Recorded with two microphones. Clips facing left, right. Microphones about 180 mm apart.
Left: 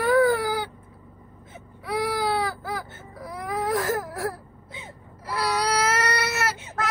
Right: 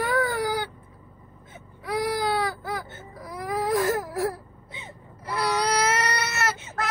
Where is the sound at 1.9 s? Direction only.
5° left (ahead or behind).